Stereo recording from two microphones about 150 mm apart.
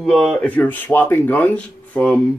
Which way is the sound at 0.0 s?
Centre (ahead or behind).